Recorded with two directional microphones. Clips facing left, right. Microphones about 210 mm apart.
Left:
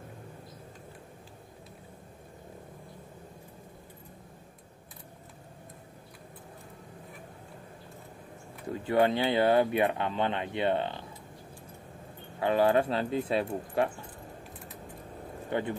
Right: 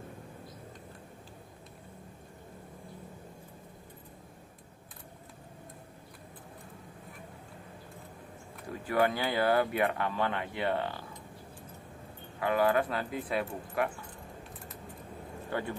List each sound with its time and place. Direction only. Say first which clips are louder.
8.8 s speech: left 3 dB; 25° left (ahead or behind)
12.4 s speech: left 3 dB; 25° left (ahead or behind)
15.5 s speech: left 4 dB; 20° left (ahead or behind)